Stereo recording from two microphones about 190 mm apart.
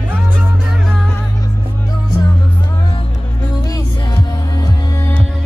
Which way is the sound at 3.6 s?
20° left (ahead or behind).